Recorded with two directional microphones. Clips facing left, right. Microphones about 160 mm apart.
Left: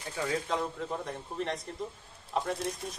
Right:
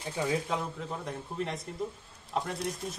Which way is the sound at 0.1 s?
15° right (ahead or behind).